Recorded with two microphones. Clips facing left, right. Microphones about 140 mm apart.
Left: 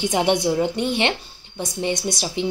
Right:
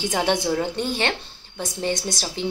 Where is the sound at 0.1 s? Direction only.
20° left (ahead or behind).